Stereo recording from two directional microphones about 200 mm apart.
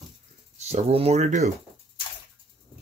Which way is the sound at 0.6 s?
30° right (ahead or behind).